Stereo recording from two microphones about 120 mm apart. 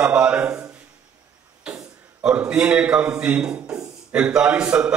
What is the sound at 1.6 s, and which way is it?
A man's voice, 10° right (ahead or behind).